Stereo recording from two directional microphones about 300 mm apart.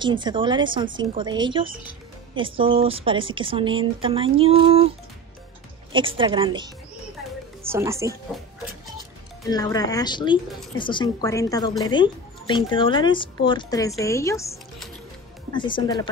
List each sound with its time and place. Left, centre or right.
0.0 s speech: centre
5.9 s speech: centre
9.5 s speech: centre
15.5 s speech: centre